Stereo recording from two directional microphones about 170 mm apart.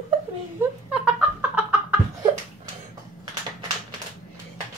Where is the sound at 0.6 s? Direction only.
5° right (ahead or behind).